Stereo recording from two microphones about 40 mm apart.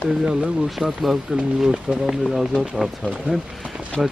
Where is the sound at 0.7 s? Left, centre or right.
Centre.